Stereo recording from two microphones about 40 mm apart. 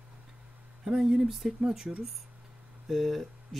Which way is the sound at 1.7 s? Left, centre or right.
Centre.